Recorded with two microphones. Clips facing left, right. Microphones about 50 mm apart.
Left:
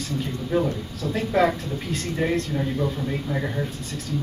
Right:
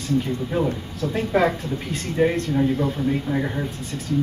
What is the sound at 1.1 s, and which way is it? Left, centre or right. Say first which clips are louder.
A man's voice: even; centre.